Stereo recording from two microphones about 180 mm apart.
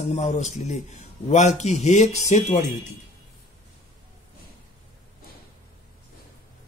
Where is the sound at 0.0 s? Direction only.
40° left (ahead or behind).